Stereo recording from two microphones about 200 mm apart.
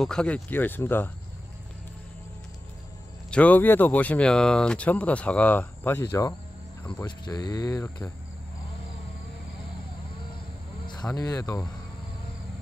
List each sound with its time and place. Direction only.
0.0 s speech: 5° left (ahead or behind)
3.3 s speech: 5° left (ahead or behind)
6.9 s speech: 20° left (ahead or behind)
10.9 s speech: 20° left (ahead or behind)